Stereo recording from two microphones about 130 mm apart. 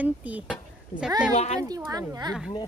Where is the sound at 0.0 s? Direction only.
10° right (ahead or behind).